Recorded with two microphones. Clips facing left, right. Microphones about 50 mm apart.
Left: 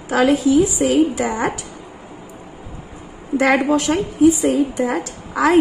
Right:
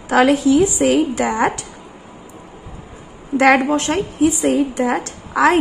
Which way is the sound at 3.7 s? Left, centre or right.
Right.